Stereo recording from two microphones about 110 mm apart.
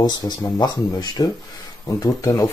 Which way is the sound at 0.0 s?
40° left (ahead or behind).